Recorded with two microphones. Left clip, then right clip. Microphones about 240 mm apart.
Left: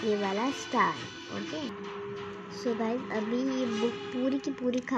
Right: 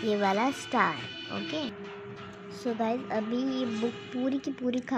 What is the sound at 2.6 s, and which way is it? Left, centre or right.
Speech, centre.